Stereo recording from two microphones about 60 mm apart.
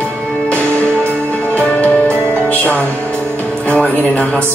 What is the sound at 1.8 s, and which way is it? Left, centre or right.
Music, left.